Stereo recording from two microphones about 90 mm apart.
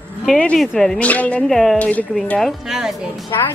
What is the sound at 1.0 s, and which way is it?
Speech, 15° left (ahead or behind).